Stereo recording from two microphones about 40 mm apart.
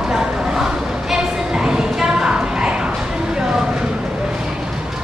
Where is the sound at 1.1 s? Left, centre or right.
Centre.